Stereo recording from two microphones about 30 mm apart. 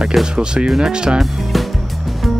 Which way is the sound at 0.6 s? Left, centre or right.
Centre.